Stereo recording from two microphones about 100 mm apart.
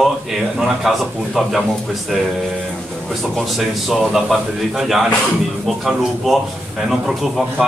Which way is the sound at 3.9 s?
Centre (ahead or behind).